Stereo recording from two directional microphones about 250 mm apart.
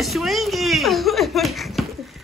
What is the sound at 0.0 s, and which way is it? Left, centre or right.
Laughter, centre.